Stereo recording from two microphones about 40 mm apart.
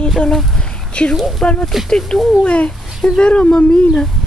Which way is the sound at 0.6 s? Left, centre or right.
Left.